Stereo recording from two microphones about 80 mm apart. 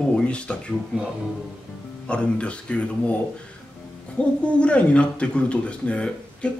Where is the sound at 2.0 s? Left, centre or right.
Centre.